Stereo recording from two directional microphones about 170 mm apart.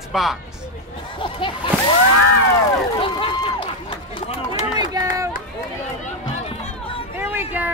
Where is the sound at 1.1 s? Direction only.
30° left (ahead or behind).